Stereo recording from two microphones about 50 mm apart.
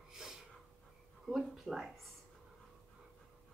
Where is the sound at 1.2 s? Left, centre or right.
Centre.